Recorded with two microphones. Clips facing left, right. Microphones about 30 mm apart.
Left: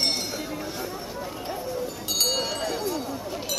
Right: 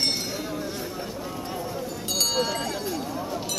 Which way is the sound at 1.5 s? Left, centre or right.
Centre.